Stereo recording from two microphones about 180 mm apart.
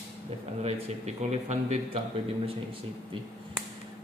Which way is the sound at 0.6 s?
35° right (ahead or behind).